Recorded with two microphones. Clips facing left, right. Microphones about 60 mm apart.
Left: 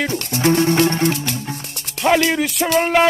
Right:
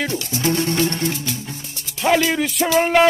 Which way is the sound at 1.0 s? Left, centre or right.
Left.